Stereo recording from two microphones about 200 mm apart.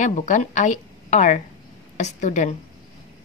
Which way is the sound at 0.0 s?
40° left (ahead or behind).